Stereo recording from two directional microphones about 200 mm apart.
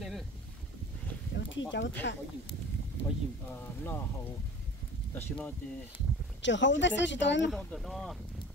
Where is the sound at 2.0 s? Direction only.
60° left (ahead or behind).